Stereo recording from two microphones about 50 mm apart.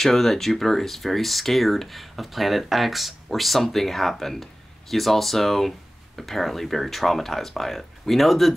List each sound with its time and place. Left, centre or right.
0.0 s speech: centre